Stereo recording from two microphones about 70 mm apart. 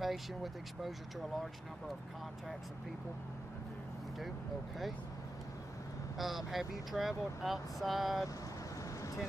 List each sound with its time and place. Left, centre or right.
0.0 s speech: centre
6.1 s speech: centre